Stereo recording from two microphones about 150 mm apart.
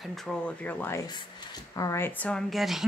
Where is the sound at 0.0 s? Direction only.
Centre (ahead or behind).